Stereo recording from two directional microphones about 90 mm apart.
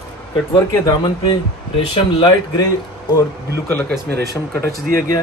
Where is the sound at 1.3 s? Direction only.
80° left.